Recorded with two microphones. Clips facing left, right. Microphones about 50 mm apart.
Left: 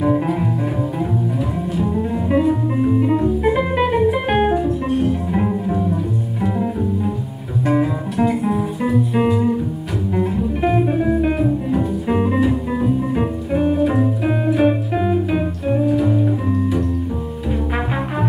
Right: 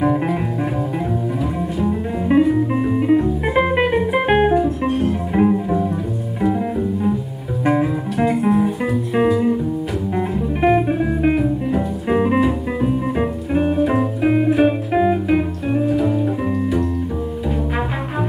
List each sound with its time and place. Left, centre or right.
1.9 s music: right
4.3 s music: centre; by 11.3 s right
11.3 s music: centre; by 14.6 s right
14.9 s organ: right